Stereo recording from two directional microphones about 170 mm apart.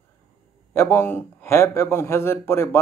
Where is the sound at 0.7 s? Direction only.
15° left (ahead or behind).